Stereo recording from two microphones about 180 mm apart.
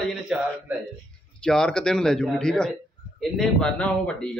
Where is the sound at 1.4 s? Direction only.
5° left (ahead or behind).